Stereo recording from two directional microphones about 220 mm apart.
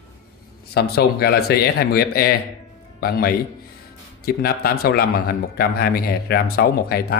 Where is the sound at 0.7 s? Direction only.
45° left (ahead or behind).